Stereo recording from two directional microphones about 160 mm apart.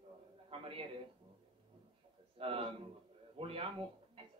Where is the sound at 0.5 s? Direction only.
35° right (ahead or behind).